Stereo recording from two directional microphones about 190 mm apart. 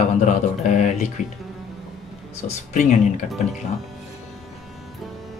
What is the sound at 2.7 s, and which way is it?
Speech, 40° left (ahead or behind).